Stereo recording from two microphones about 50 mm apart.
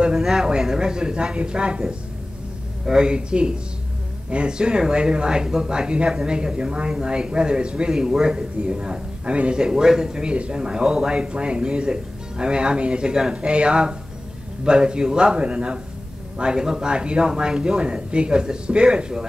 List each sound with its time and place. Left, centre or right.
0.1 s speech: centre
2.8 s speech: centre